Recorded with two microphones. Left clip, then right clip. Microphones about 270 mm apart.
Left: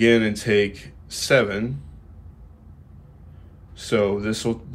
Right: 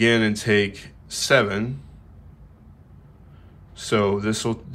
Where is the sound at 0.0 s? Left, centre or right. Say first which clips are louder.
Left 1 dB; centre.